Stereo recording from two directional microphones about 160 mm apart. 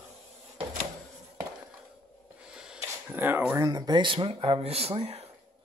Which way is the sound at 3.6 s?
25° right (ahead or behind).